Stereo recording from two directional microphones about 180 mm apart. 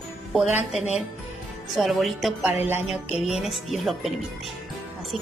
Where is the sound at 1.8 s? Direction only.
Centre (ahead or behind).